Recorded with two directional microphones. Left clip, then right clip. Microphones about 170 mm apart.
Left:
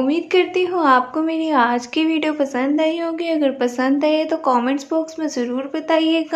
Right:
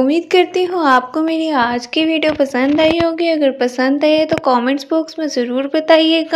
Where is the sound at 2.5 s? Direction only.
25° right (ahead or behind).